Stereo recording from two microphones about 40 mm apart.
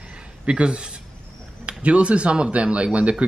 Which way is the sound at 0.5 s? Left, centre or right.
Right.